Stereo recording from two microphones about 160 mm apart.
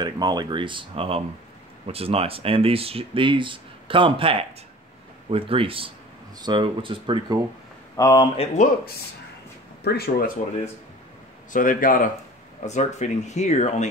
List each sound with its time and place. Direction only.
0.0 s speech: 25° right (ahead or behind)
7.9 s speech: 20° left (ahead or behind)
8.6 s speech: 50° left (ahead or behind)
9.8 s speech: 80° left
11.5 s speech: 55° left (ahead or behind)
12.6 s speech: 45° left (ahead or behind)